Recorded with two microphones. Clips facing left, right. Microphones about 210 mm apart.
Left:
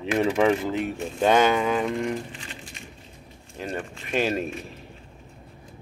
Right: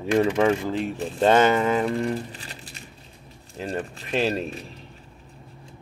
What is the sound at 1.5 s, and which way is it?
Speech, centre (ahead or behind).